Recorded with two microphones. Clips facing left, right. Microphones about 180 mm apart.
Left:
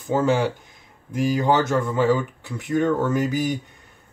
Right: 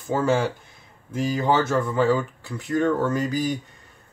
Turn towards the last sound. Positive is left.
turn(degrees=20)  # may be behind; listen again after turning